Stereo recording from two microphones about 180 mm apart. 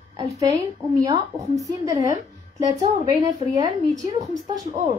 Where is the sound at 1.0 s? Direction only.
20° right (ahead or behind).